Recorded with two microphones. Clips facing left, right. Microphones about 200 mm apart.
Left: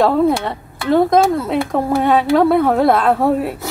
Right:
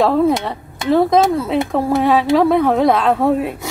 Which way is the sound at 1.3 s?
Centre (ahead or behind).